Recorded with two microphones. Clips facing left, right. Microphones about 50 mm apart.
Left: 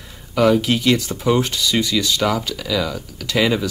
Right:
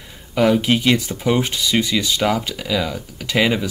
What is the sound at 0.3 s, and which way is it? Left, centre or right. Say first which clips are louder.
Speech: even; centre.